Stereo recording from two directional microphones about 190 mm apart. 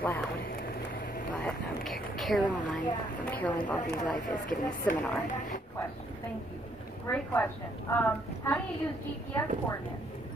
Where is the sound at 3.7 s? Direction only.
40° left (ahead or behind).